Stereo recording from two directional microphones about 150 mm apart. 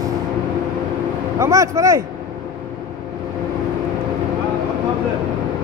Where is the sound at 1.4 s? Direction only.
20° right (ahead or behind).